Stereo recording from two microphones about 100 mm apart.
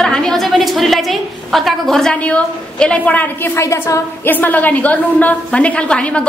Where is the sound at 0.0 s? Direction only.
5° left (ahead or behind).